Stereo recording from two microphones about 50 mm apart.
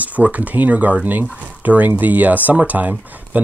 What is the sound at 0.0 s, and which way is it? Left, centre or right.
Speech, right.